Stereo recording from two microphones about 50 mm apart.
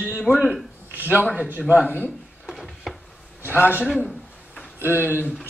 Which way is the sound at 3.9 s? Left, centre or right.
Centre.